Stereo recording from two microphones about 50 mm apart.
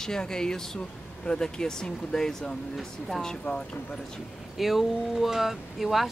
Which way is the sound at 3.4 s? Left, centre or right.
Left.